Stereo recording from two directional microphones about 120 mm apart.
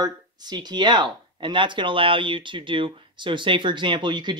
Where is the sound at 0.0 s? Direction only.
35° right (ahead or behind).